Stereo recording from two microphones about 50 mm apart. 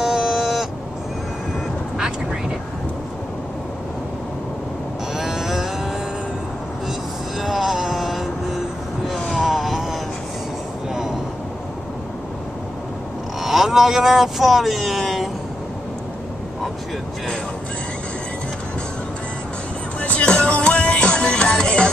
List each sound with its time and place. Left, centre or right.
0.0 s a sound: centre
5.1 s a sound: centre
7.3 s music: centre
9.4 s vehicle: centre
13.4 s speech: centre
20.0 s music: left
20.2 s music: centre